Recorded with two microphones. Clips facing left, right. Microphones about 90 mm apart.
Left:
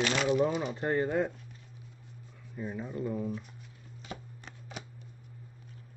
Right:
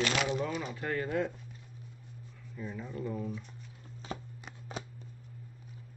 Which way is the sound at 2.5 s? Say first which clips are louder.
Left 3 dB; 30° left (ahead or behind).